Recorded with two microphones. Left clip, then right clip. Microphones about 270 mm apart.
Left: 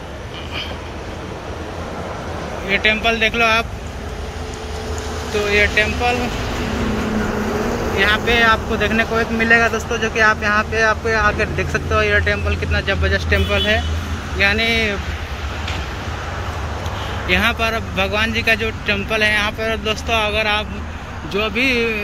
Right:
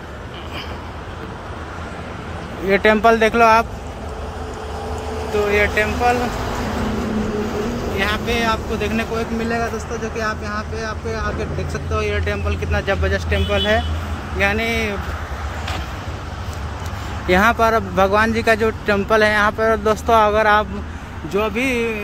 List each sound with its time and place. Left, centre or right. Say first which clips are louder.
2.7 s speech: right 3 dB; centre
5.5 s speech: left 3 dB; centre
8.0 s speech: left 6 dB; centre
17.3 s speech: right 3 dB; centre